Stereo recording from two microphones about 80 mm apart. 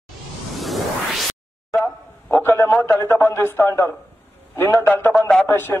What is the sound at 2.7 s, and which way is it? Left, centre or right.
A man's voice, left.